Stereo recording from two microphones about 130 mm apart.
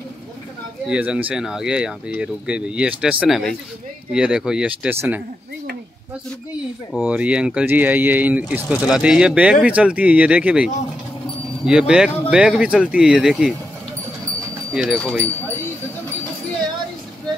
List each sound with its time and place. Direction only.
0.8 s speech: 10° right (ahead or behind)
7.1 s speech: 10° right (ahead or behind)
14.7 s speech: 5° right (ahead or behind)